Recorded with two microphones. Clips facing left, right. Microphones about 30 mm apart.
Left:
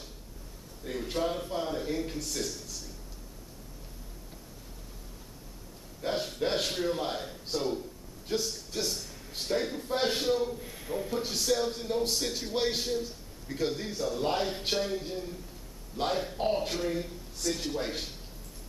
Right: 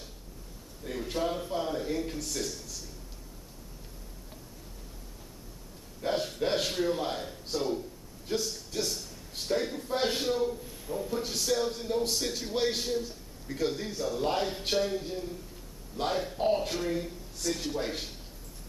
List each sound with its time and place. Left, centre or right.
0.8 s a man's voice: centre
6.0 s a sound: centre
8.3 s a man's voice: centre
10.9 s a man's voice: centre
11.1 s a man's voice: centre